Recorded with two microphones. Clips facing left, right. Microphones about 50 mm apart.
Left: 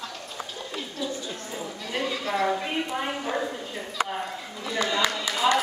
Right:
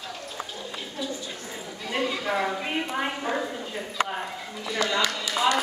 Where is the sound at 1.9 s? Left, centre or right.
Centre.